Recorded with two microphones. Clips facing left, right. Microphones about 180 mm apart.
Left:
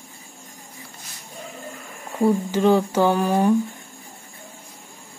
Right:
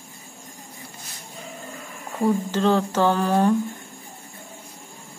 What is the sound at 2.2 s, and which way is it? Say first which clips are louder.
Speech: left 2 dB; 10° left (ahead or behind).